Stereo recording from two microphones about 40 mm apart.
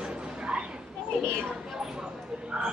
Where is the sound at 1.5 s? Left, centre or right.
Centre.